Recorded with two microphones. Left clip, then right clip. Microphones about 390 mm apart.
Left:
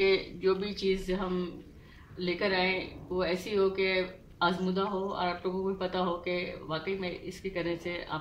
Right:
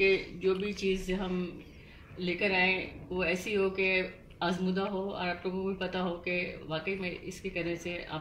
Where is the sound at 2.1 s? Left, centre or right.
Left.